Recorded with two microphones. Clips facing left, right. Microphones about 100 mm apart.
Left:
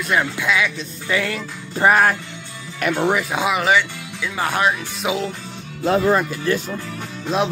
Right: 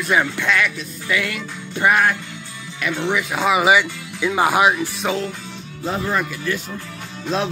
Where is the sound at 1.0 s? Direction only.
30° left (ahead or behind).